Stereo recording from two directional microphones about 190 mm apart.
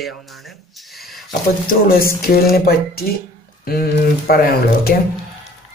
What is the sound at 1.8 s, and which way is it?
Speech, 50° left (ahead or behind).